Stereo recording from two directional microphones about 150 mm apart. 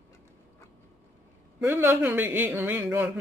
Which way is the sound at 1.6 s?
15° right (ahead or behind).